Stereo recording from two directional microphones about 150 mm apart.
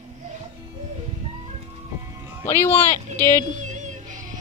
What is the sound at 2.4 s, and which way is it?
A woman's voice, 15° left (ahead or behind).